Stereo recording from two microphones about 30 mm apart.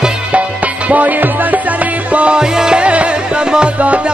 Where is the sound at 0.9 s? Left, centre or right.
Right.